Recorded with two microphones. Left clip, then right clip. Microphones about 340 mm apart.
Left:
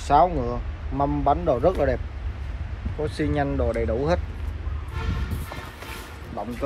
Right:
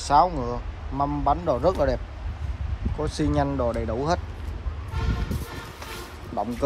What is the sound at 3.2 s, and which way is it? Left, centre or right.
Speech, centre.